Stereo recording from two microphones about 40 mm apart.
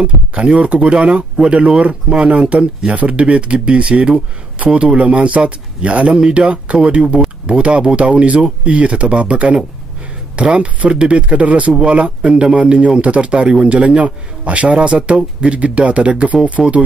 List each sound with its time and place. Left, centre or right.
0.0 s speech: right
16.6 s speech: centre